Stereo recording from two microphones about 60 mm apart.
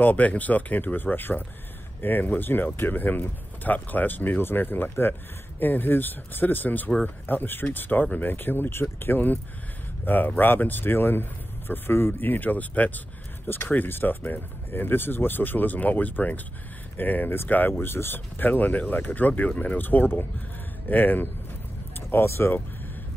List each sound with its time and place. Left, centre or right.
0.0 s speech: left
21.9 s speech: left